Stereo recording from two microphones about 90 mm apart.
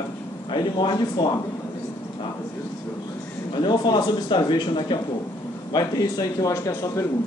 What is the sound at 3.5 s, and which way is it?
Speech, 55° left (ahead or behind).